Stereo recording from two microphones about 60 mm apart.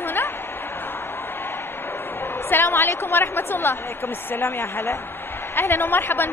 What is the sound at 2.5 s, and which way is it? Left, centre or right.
A woman's voice, left.